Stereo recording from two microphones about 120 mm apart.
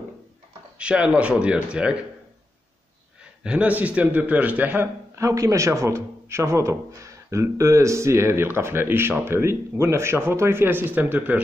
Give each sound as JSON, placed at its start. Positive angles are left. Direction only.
{"t": 0.7, "sound": "speech", "side_deg": -10}
{"t": 3.4, "sound": "a man's voice", "side_deg": -10}